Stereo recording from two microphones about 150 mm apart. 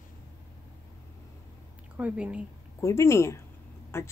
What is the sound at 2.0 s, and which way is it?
Speech, 10° right (ahead or behind).